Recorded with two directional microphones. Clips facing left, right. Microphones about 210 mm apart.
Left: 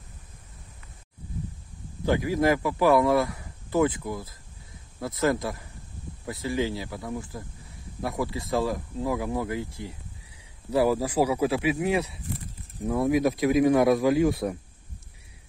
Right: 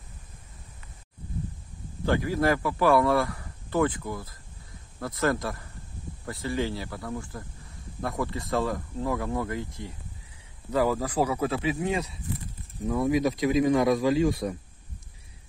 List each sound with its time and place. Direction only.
2.0 s speech: 15° left (ahead or behind)
14.1 s speech: 60° left (ahead or behind)